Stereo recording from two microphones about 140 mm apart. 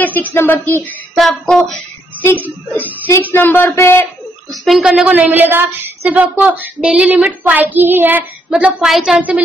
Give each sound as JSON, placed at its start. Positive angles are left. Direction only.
{"t": 0.0, "sound": "speech", "side_deg": 10}
{"t": 4.5, "sound": "speech", "side_deg": 0}